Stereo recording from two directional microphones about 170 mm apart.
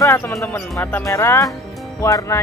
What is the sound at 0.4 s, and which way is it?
Speech, 15° left (ahead or behind).